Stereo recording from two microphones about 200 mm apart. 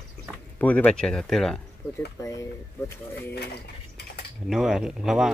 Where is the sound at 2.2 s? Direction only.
15° left (ahead or behind).